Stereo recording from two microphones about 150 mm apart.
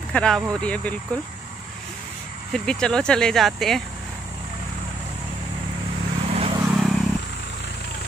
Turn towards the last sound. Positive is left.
turn(degrees=0)  # may be behind; listen again after turning